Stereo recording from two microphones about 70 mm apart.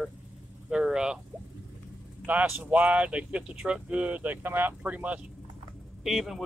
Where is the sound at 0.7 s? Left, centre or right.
Centre.